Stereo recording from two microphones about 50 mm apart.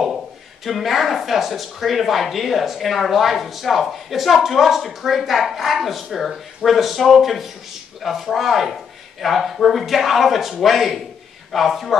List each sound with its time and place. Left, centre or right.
0.7 s speech: centre